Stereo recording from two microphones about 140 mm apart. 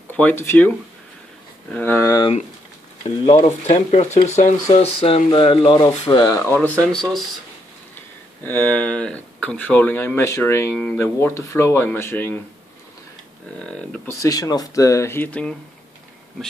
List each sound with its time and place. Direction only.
0.1 s speech: 10° left (ahead or behind)
3.3 s speech: 45° left (ahead or behind)
4.7 s speech: 45° left (ahead or behind); by 6.4 s 25° left (ahead or behind)
6.4 s speech: 10° left (ahead or behind)
8.5 s speech: 10° left (ahead or behind)
13.6 s speech: 5° left (ahead or behind)
14.0 s speech: 25° left (ahead or behind)